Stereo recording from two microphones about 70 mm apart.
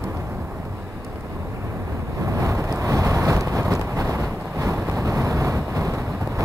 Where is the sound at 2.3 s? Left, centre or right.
Right.